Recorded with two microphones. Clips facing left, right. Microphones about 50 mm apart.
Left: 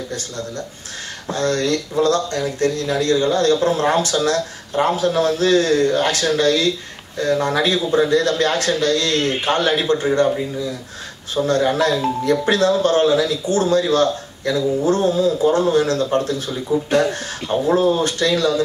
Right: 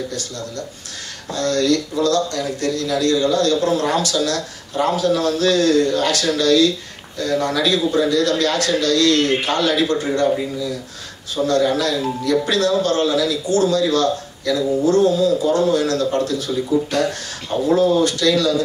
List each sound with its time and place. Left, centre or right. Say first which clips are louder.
1.3 s speech: right 1 dB; left
11.4 s speech: even; left